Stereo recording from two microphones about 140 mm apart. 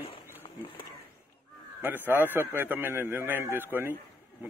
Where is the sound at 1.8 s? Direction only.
15° right (ahead or behind).